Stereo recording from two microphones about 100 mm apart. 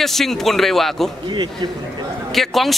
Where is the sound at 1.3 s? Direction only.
45° right (ahead or behind).